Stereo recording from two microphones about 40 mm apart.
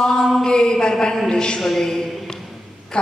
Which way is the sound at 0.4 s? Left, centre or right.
Centre.